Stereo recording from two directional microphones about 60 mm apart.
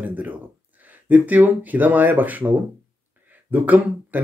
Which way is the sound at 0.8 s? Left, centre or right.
Right.